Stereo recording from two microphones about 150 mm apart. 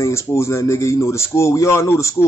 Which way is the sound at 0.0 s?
20° left (ahead or behind).